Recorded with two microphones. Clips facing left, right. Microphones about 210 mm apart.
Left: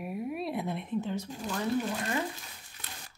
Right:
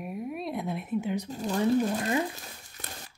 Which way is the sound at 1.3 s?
40° right (ahead or behind).